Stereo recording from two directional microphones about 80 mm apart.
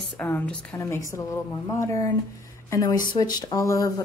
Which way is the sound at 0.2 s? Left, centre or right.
Left.